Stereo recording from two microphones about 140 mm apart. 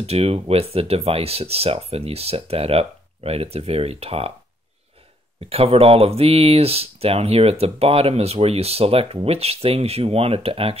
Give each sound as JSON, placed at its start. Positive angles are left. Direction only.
{"t": 0.0, "sound": "speech", "side_deg": -45}
{"t": 5.5, "sound": "speech", "side_deg": -45}